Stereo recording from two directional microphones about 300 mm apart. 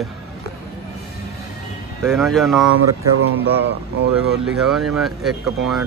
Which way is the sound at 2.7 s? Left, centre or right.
Right.